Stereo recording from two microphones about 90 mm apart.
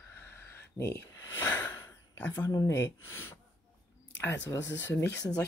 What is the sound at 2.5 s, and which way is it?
Speech, 30° left (ahead or behind).